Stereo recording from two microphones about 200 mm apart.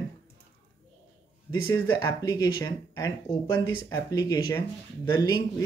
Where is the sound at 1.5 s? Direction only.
20° left (ahead or behind).